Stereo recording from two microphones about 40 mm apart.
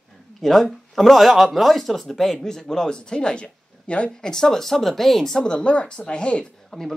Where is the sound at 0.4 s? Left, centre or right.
Centre; by 4.1 s left.